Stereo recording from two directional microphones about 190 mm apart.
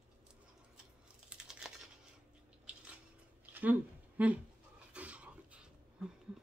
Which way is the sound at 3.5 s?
10° right (ahead or behind).